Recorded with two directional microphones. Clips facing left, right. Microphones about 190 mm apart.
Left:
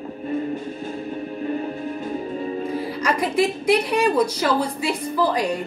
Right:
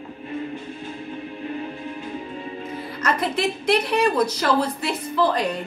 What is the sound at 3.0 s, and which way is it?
A woman's voice, 10° left (ahead or behind).